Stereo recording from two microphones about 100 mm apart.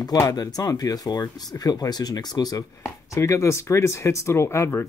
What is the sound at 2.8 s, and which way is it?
Speech, 30° left (ahead or behind).